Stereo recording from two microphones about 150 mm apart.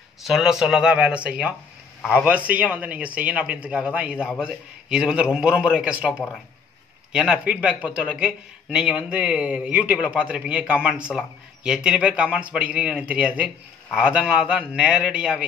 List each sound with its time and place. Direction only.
0.2 s speech: 5° right (ahead or behind)